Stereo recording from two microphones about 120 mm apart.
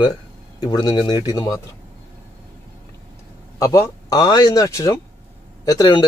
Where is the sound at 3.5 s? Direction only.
30° left (ahead or behind).